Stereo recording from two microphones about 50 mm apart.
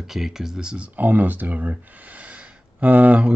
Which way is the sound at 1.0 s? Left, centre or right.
Right.